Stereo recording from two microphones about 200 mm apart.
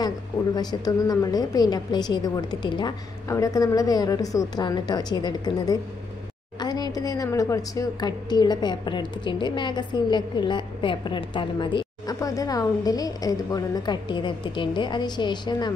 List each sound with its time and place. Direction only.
0.6 s a woman's voice: 20° left (ahead or behind)